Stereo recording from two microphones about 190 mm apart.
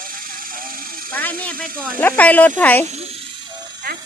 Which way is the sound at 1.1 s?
10° left (ahead or behind).